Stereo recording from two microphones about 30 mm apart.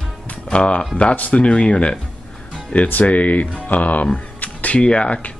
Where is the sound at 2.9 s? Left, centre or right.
Left.